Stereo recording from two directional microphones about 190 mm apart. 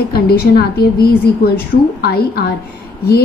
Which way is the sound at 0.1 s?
55° left (ahead or behind).